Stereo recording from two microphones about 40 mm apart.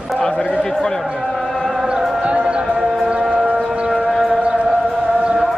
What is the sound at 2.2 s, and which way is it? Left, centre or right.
Music, right.